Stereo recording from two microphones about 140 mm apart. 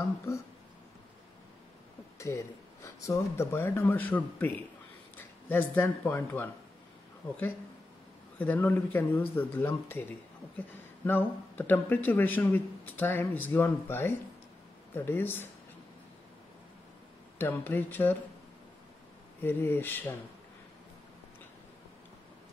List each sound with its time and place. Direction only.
2.1 s speech: 20° left (ahead or behind)
8.4 s speech: 15° left (ahead or behind)
11.1 s speech: 15° left (ahead or behind)
17.4 s speech: 15° left (ahead or behind)
19.4 s speech: 15° left (ahead or behind)